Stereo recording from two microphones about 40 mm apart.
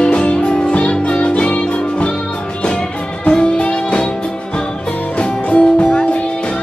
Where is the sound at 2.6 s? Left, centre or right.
Left.